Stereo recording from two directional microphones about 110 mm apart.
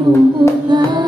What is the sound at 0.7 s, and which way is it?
Music, 40° right (ahead or behind).